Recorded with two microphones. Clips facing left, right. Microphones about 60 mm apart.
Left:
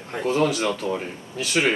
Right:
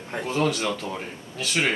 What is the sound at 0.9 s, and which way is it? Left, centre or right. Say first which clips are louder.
Speech: left 5 dB; centre.